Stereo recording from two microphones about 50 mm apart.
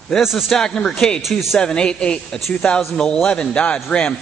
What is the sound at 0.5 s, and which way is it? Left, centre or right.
Speech, centre.